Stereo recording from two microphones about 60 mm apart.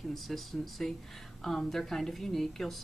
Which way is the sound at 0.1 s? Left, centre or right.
Centre.